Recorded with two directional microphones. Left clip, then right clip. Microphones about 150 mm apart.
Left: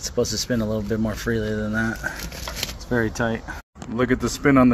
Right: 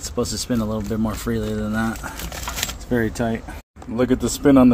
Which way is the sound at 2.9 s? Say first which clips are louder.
Even; 25° right (ahead or behind).